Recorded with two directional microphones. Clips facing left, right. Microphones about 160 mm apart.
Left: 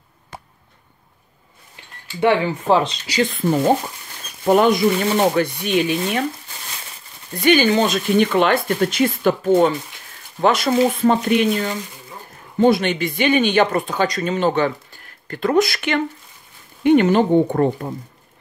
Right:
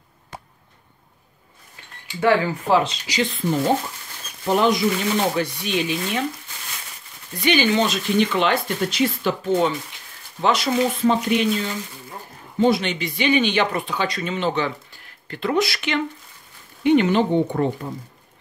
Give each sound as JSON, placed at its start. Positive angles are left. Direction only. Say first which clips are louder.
{"t": 2.1, "sound": "speech", "louder": "left 1 dB", "side_deg": 20}
{"t": 3.1, "sound": "speech", "louder": "left 4 dB", "side_deg": 50}
{"t": 7.3, "sound": "speech", "louder": "left 4 dB", "side_deg": 50}